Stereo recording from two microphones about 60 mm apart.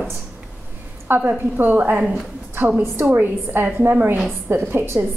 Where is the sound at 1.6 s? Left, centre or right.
Right.